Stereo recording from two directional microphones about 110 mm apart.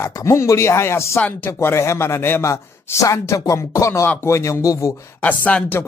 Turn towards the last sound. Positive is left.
turn(degrees=15)  # may be behind; listen again after turning